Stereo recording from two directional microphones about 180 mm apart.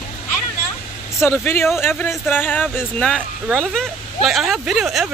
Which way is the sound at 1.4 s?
15° left (ahead or behind).